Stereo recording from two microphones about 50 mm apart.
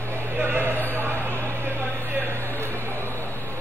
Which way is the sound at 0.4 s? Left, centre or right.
Right.